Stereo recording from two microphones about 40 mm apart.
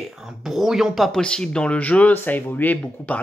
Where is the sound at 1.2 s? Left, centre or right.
Left.